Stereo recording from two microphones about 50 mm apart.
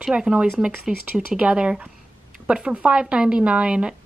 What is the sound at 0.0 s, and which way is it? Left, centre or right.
A woman's voice, centre.